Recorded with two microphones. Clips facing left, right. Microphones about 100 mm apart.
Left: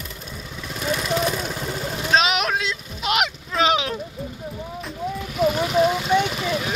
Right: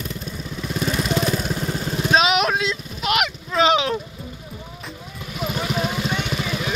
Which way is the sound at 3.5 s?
5° left (ahead or behind).